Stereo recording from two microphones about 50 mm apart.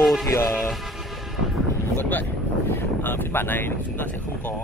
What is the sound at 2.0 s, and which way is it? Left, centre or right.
Speech, left.